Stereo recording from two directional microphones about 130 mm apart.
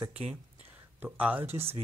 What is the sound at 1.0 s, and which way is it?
Speech, 15° right (ahead or behind).